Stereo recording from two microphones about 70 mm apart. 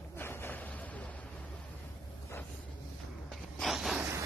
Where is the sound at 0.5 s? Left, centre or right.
Left.